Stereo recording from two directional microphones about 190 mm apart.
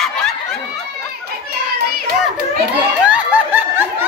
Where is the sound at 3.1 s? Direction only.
10° right (ahead or behind).